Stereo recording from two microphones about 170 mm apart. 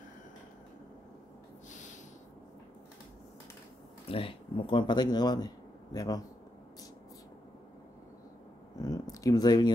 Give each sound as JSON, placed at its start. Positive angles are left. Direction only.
{"t": 1.7, "sound": "snort", "side_deg": 45}
{"t": 4.1, "sound": "speech", "side_deg": 30}
{"t": 8.7, "sound": "a sound", "side_deg": 20}